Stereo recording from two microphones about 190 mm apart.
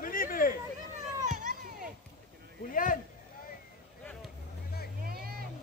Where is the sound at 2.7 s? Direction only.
45° left (ahead or behind).